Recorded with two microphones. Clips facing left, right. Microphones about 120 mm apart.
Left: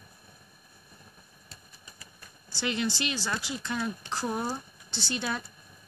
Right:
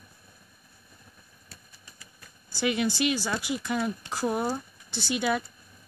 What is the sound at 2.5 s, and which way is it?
Speech, 10° right (ahead or behind).